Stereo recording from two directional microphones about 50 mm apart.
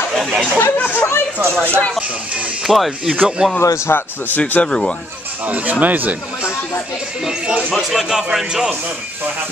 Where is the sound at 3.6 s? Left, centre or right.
Left.